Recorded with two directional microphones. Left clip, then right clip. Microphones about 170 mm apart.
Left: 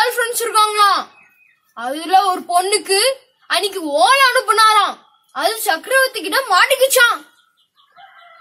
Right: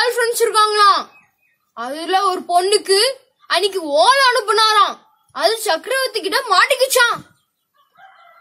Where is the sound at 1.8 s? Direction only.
20° right (ahead or behind).